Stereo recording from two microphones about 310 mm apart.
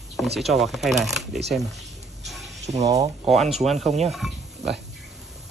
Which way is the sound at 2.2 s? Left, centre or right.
Centre.